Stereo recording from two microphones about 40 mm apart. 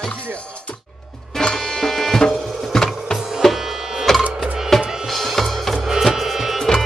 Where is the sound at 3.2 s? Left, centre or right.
Centre.